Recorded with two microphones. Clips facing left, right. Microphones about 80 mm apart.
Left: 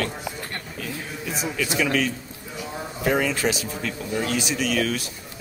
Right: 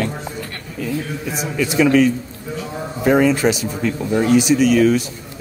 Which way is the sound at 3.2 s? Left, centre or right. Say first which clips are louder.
Right 8 dB; centre.